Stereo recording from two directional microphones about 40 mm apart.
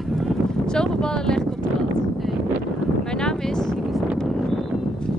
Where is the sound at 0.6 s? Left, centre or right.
Centre.